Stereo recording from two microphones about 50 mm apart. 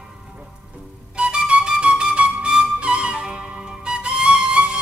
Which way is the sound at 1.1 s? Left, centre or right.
Centre.